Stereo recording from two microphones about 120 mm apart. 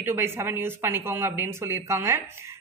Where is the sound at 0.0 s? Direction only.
20° right (ahead or behind).